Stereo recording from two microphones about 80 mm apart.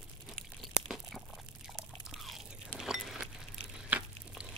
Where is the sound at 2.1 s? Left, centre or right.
Centre.